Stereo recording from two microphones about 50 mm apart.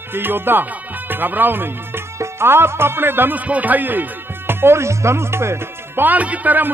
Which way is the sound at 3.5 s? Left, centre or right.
Right.